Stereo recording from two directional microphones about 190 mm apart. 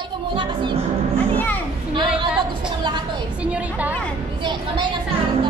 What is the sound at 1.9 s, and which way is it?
Speech, 25° right (ahead or behind).